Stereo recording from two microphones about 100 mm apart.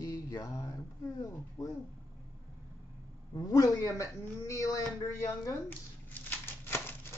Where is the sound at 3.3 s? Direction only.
40° left (ahead or behind); by 7.0 s 20° left (ahead or behind).